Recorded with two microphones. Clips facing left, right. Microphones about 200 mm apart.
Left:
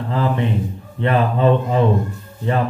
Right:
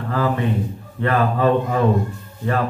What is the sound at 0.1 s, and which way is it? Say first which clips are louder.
A man's voice: even; 20° left (ahead or behind).